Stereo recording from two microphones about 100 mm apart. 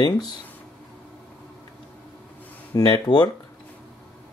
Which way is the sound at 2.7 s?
45° left (ahead or behind).